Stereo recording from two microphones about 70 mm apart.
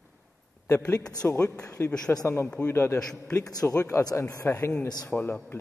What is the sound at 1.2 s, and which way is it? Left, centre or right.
Speech, left.